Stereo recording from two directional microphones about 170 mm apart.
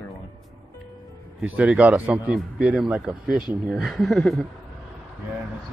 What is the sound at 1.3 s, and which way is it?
Speech, 5° right (ahead or behind).